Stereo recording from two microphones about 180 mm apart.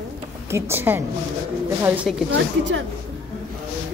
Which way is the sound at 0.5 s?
15° right (ahead or behind).